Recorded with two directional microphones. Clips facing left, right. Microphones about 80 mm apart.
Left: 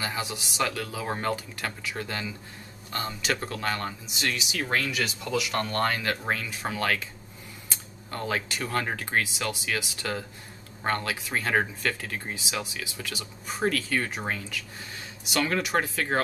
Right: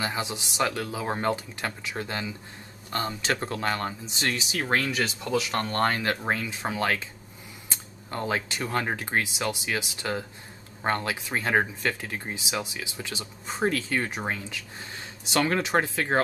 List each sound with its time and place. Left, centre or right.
0.0 s speech: right